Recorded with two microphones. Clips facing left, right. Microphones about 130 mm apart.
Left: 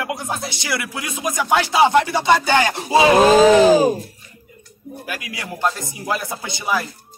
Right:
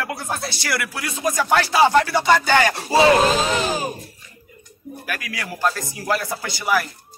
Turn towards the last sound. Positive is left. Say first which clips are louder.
# right 1 dB
turn(degrees=20)  # may be behind; listen again after turning